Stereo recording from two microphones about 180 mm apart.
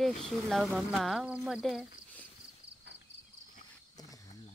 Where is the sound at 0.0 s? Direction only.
Centre (ahead or behind).